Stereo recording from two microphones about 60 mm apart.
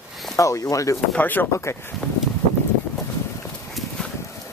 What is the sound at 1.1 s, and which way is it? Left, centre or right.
Speech, left.